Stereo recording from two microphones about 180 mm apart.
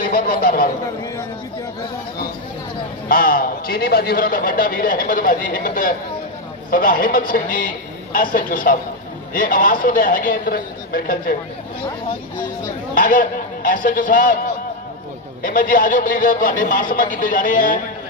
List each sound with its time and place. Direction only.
0.0 s a sound: 55° left (ahead or behind)
3.1 s a man's voice: 50° left (ahead or behind)
12.4 s a man's voice: 45° left (ahead or behind)
15.4 s a man's voice: 50° left (ahead or behind)